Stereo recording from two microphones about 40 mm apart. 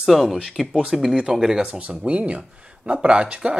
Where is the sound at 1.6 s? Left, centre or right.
Right.